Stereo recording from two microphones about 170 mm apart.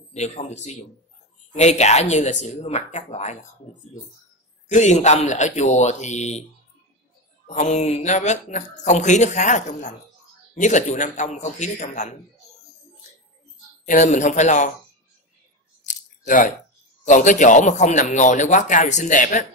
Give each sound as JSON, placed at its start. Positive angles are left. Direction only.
{"t": 0.1, "sound": "speech", "side_deg": 40}
{"t": 4.6, "sound": "speech", "side_deg": 45}
{"t": 7.4, "sound": "speech", "side_deg": 45}
{"t": 13.8, "sound": "speech", "side_deg": 45}
{"t": 15.8, "sound": "a sound", "side_deg": 45}
{"t": 17.0, "sound": "speech", "side_deg": 45}